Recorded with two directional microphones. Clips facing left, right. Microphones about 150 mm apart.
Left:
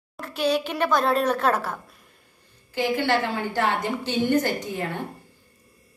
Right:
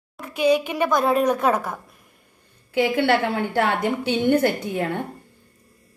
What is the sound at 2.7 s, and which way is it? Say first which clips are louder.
A woman's voice: right 4 dB; 60° right (ahead or behind).